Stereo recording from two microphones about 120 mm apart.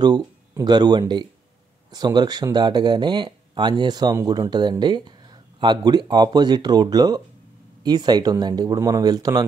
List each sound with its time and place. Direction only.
0.0 s speech: 35° right (ahead or behind)